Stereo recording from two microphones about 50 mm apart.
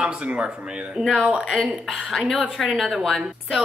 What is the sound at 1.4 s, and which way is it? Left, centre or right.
Speech, centre.